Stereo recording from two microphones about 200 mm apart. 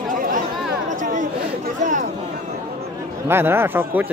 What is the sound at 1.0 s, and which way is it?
Chatter, 40° right (ahead or behind).